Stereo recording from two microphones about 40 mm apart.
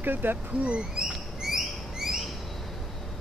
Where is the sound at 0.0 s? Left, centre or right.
Right.